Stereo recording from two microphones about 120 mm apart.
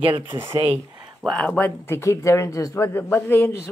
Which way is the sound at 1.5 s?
15° left (ahead or behind).